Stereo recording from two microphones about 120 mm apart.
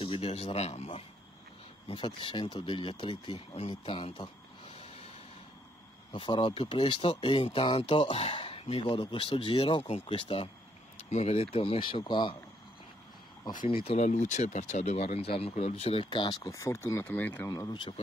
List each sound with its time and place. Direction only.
0.0 s speech: 55° left (ahead or behind)
1.9 s speech: 45° left (ahead or behind); by 5.1 s 60° left (ahead or behind)
6.1 s speech: 45° left (ahead or behind)
10.1 s speech: 45° left (ahead or behind)
11.1 s speech: 65° left (ahead or behind); by 12.4 s 40° left (ahead or behind)
13.7 s speech: 55° left (ahead or behind)
14.0 s speech: 85° left; by 17.3 s 15° left (ahead or behind)
17.5 s speech: 30° left (ahead or behind)